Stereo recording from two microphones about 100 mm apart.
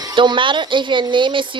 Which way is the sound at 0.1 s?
55° right (ahead or behind).